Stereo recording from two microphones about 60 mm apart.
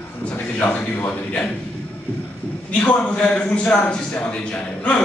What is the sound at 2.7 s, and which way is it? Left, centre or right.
A man's voice, left.